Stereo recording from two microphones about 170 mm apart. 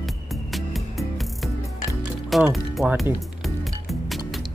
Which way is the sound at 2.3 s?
Centre (ahead or behind).